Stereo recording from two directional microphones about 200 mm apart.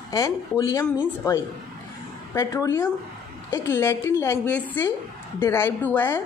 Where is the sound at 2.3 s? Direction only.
15° left (ahead or behind).